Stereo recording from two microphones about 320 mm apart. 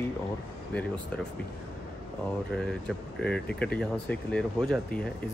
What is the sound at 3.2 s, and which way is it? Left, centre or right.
Speech, centre.